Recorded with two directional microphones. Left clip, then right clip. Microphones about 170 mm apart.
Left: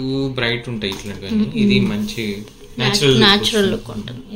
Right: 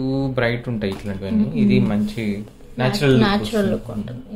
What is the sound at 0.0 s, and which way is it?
Speech, 90° right.